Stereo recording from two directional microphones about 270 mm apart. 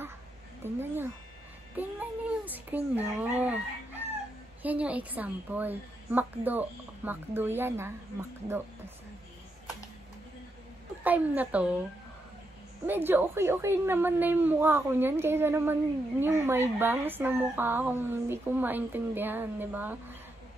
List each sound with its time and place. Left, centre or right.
0.6 s a woman's voice: centre
11.1 s a woman's voice: centre
12.8 s a woman's voice: centre